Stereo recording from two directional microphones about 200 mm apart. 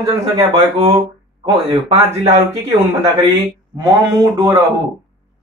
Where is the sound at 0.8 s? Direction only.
30° right (ahead or behind).